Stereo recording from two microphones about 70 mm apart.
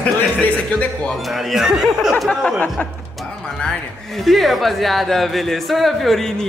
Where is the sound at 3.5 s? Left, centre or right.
Centre.